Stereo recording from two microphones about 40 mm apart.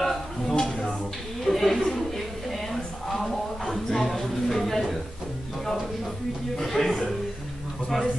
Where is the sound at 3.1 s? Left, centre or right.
Centre.